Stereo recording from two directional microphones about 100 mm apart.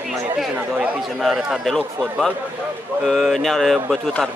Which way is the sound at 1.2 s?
Centre (ahead or behind).